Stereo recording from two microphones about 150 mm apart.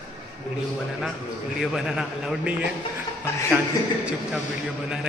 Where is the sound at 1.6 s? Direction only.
Centre (ahead or behind).